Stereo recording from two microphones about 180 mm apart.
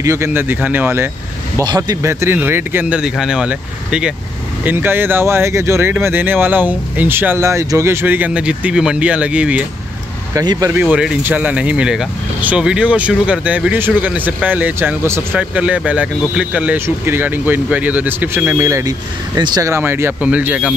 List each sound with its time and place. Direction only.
0.0 s speech: 15° right (ahead or behind)
10.3 s speech: 20° right (ahead or behind)
10.7 s speech: 5° right (ahead or behind)